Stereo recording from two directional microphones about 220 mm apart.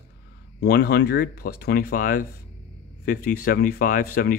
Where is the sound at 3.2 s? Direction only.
40° left (ahead or behind).